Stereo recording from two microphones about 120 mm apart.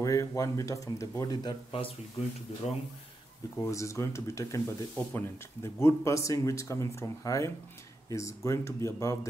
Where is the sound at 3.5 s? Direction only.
20° left (ahead or behind).